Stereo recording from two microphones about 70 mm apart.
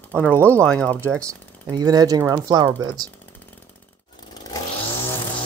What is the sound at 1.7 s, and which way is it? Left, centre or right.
Speech, right.